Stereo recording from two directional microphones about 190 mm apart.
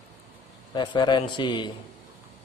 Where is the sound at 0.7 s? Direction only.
25° left (ahead or behind).